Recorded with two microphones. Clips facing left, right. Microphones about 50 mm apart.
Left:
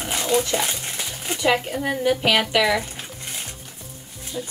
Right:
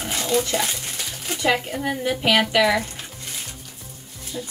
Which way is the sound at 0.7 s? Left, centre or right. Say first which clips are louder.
Left 1 dB; centre.